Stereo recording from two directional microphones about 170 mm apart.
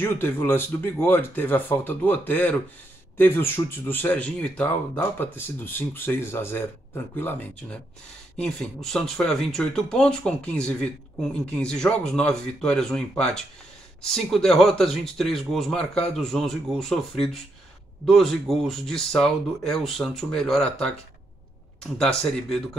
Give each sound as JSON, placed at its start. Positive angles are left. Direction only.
{"t": 0.0, "sound": "speech", "side_deg": 15}
{"t": 21.9, "sound": "speech", "side_deg": 5}